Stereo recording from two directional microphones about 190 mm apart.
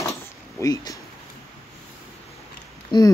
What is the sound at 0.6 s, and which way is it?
Speech, 20° left (ahead or behind).